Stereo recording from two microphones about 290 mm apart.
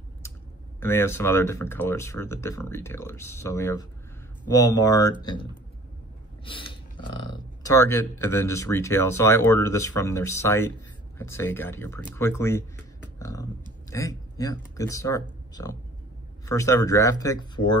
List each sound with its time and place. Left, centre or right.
0.2 s clicking: centre
0.7 s speech: centre
6.4 s a sound: centre
7.6 s speech: centre
13.2 s a sound: centre
15.5 s speech: centre